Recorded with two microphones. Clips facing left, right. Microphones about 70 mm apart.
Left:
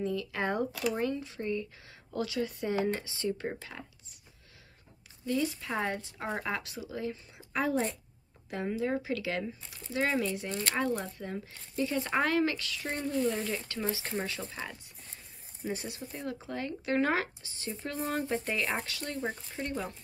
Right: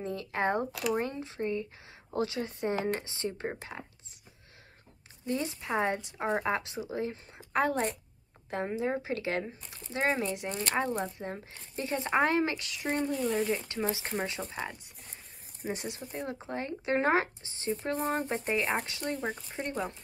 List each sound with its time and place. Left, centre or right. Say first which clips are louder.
0.0 s a woman's voice: right 1 dB; right
5.2 s speech: left 2 dB; right
6.4 s speech: right 4 dB; right
7.5 s a woman's voice: right 2 dB; right
8.5 s speech: right 1 dB; right
17.9 s speech: even; right
18.2 s speech: right 1 dB; right